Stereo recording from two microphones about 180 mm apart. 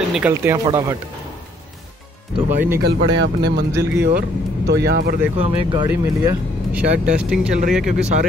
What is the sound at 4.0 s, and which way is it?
Speech, 65° right (ahead or behind).